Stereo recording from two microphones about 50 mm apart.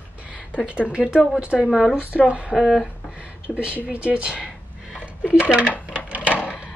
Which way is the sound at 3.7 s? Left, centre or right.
Right.